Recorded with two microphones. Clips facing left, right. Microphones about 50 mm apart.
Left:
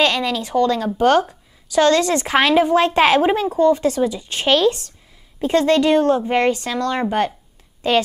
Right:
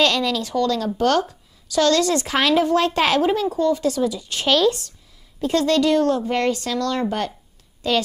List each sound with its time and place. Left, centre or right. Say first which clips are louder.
0.0 s a woman's voice: left 1 dB; centre